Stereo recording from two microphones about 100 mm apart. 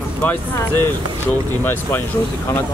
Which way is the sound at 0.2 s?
20° left (ahead or behind).